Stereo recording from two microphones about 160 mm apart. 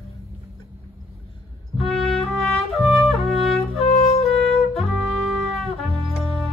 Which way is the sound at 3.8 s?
40° left (ahead or behind).